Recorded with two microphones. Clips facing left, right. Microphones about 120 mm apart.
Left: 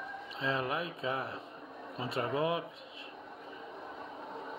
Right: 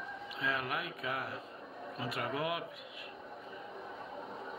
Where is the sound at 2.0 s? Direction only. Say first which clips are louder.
Left 4 dB; 25° left (ahead or behind).